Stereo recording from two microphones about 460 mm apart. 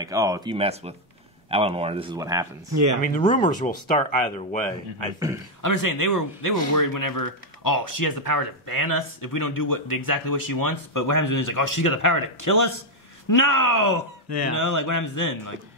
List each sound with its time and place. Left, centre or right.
0.0 s speech: centre
2.7 s speech: right
3.2 s speech: centre
5.6 s a man's voice: left
13.8 s speech: right
14.6 s a man's voice: left